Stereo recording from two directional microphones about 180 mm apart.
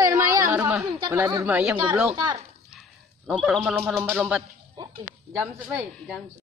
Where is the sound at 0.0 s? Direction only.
20° right (ahead or behind).